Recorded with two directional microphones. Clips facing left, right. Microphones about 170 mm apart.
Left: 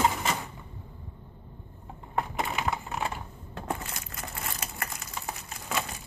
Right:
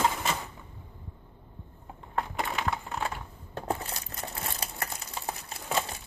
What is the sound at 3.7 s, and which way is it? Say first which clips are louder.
Crumpling: right 2 dB; 35° right (ahead or behind).